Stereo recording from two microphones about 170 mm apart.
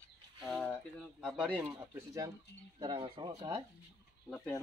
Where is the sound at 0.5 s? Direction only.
5° right (ahead or behind).